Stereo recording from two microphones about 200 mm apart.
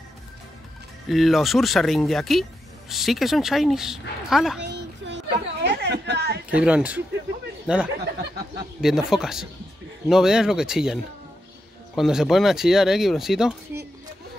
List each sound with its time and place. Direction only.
1.0 s speech: centre (ahead or behind)
4.6 s a sound: 60° right (ahead or behind)
6.5 s speech: 5° right (ahead or behind)